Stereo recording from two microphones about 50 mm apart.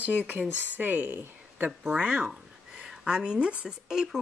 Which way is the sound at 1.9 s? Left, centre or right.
Right.